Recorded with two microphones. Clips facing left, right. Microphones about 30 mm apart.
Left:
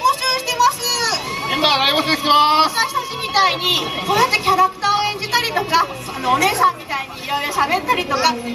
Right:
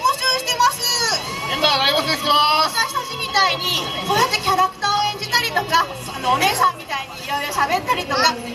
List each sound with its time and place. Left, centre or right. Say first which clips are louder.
0.2 s music: even; centre
0.7 s a sound: left 1 dB; centre
7.2 s chatter: left 2 dB; left
7.6 s a woman's voice: left 1 dB; centre